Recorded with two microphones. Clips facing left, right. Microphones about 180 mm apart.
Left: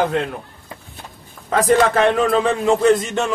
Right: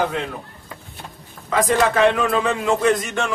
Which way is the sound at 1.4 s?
40° left (ahead or behind).